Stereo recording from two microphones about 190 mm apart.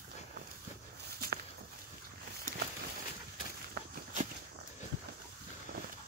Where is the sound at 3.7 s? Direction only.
45° right (ahead or behind).